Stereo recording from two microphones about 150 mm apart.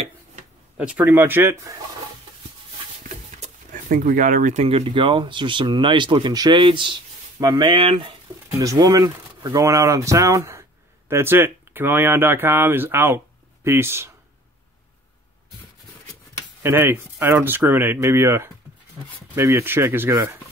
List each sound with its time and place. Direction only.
0.7 s speech: 10° right (ahead or behind)
3.1 s a sound: 50° right (ahead or behind)
4.6 s speech: 40° right (ahead or behind)
8.5 s speech: 20° right (ahead or behind)
16.6 s speech: 15° right (ahead or behind)